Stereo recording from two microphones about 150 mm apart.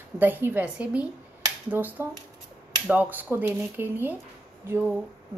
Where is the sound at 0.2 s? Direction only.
15° right (ahead or behind).